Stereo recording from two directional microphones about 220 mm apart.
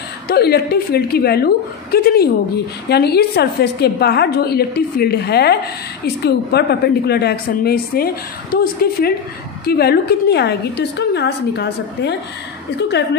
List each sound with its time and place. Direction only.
0.3 s a woman's voice: 45° left (ahead or behind)